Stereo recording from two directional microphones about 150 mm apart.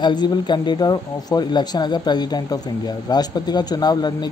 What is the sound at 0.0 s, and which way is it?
Speech, 30° left (ahead or behind).